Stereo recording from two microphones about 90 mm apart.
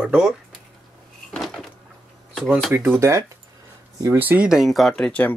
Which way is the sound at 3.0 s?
35° right (ahead or behind).